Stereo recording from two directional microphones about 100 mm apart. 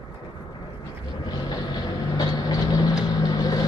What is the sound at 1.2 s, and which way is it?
Vehicle, 45° left (ahead or behind).